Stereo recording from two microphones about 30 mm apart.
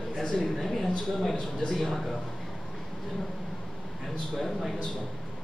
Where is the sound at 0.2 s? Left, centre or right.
Centre.